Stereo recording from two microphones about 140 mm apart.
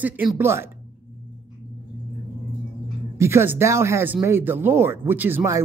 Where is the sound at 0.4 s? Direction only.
20° right (ahead or behind).